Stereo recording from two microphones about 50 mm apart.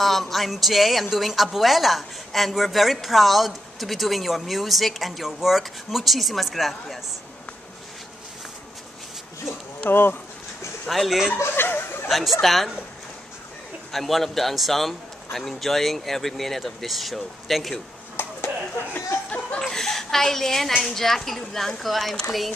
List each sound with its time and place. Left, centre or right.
0.0 s a woman's voice: centre
9.8 s speech: left
10.9 s a woman's voice: centre
11.3 s chuckle: left
12.1 s a woman's voice: centre
13.9 s a woman's voice: centre
18.2 s a sound: left
19.7 s a sound: centre
20.8 s a woman's voice: centre